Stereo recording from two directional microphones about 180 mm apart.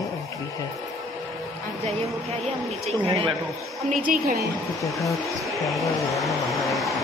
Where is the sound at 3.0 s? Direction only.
30° right (ahead or behind).